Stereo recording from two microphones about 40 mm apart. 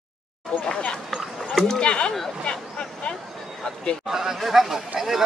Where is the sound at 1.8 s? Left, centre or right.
Left.